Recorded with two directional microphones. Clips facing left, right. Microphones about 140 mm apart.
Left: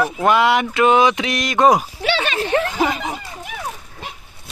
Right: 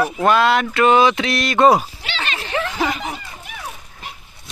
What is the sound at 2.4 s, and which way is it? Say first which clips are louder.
Chuckle: left 3 dB; 40° left (ahead or behind).